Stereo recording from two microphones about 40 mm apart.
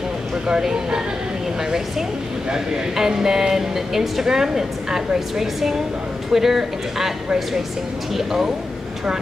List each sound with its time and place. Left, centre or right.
0.5 s speech: centre
2.5 s speech: centre
8.1 s speech: centre